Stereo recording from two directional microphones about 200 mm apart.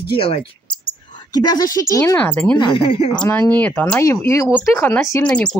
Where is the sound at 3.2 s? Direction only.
10° left (ahead or behind).